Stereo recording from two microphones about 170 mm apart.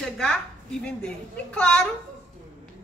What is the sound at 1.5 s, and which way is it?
Speech, 5° left (ahead or behind).